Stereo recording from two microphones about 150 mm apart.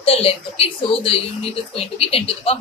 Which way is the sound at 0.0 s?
40° left (ahead or behind).